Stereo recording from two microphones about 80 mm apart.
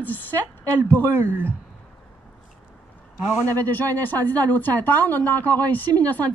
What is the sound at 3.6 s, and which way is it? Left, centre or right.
Speech, left.